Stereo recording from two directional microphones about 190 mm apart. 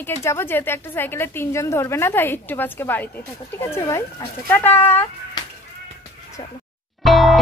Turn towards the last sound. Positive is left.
turn(degrees=0)  # may be behind; listen again after turning